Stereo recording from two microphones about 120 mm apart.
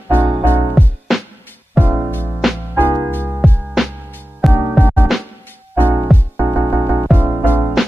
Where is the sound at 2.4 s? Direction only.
Centre (ahead or behind).